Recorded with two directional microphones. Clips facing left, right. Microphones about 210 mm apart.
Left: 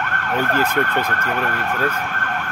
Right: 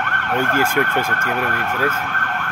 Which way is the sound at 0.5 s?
10° right (ahead or behind).